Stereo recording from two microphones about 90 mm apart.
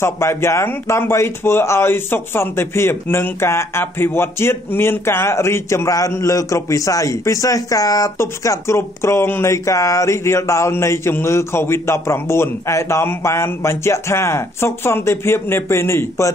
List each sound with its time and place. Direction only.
0.0 s speech: 30° left (ahead or behind)